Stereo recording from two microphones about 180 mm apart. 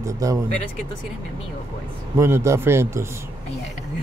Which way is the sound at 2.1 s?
15° right (ahead or behind).